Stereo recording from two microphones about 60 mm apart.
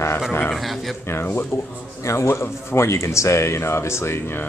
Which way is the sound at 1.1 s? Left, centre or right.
Left.